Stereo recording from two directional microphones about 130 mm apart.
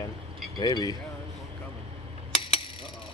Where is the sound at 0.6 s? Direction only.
30° left (ahead or behind).